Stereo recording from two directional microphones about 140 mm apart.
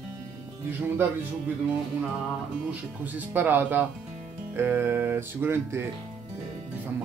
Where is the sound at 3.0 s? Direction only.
15° right (ahead or behind).